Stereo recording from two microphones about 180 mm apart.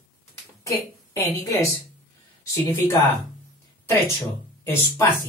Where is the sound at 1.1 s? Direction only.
15° left (ahead or behind).